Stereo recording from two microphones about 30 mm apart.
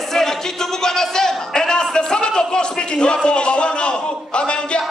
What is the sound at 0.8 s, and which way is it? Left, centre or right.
A man's voice, centre.